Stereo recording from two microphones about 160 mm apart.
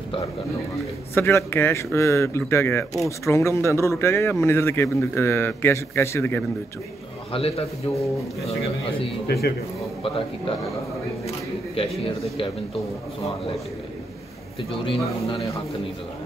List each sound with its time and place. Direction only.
1.1 s speech: 15° left (ahead or behind)
7.3 s a man's voice: 40° left (ahead or behind)
11.2 s single-lens reflex camera: 35° left (ahead or behind)